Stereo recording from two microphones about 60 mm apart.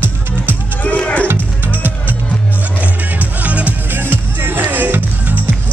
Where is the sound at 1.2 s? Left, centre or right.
Right.